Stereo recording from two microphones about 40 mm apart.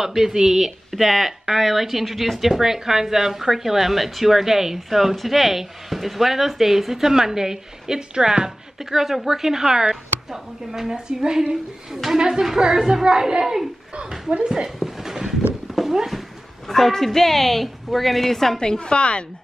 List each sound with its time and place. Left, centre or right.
0.0 s speech: centre
8.9 s speech: centre
14.3 s speech: right
14.8 s a sound: centre
15.7 s horse: centre
16.6 s a woman's voice: centre
18.6 s a woman's voice: left